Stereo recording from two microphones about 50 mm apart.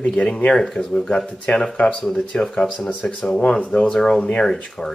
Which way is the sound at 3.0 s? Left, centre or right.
Left.